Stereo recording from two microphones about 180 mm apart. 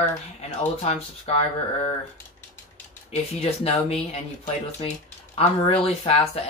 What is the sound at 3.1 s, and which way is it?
Speech, 35° left (ahead or behind).